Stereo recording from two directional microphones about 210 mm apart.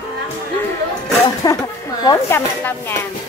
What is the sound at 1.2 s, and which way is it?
A woman's voice, 20° left (ahead or behind).